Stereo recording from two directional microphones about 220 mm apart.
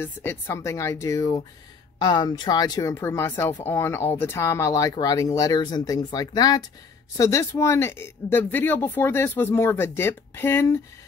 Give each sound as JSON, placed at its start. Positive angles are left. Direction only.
{"t": 0.0, "sound": "speech", "side_deg": 10}